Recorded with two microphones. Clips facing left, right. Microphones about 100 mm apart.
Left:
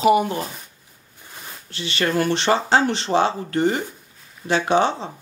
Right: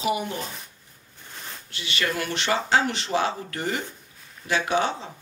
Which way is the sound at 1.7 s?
30° left (ahead or behind).